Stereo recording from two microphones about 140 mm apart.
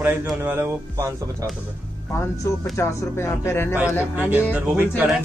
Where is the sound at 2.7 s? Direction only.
20° left (ahead or behind).